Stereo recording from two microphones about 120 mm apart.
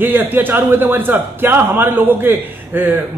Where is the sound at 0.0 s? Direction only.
15° right (ahead or behind).